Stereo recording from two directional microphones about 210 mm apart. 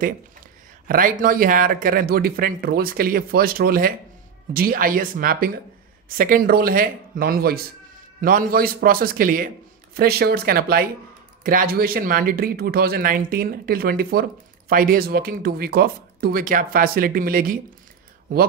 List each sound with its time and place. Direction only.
0.8 s speech: 40° right (ahead or behind)